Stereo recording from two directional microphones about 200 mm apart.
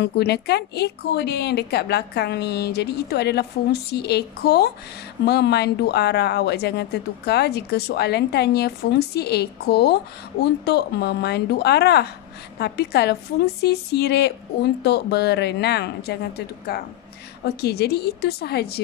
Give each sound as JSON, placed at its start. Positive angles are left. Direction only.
{"t": 0.0, "sound": "speech", "side_deg": 55}